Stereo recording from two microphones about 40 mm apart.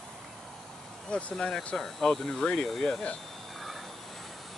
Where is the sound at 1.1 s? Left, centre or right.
Left.